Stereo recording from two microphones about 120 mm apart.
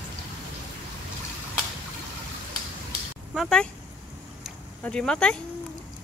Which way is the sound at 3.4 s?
5° left (ahead or behind).